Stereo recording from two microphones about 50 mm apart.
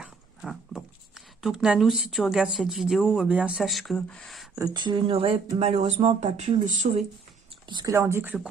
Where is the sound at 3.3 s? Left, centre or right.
Right.